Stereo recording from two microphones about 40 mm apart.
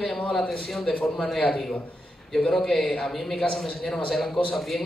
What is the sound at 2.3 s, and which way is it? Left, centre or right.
Speech, centre.